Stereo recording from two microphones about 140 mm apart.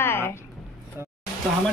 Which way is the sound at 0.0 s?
15° left (ahead or behind).